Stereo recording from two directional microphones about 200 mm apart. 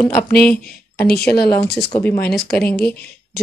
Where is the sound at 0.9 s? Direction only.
50° left (ahead or behind).